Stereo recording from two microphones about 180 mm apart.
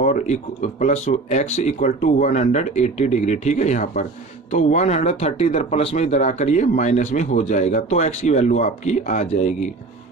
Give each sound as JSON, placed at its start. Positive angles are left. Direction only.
{"t": 0.0, "sound": "speech", "side_deg": 40}